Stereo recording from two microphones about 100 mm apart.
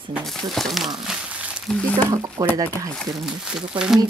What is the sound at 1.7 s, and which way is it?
Speech, 10° left (ahead or behind).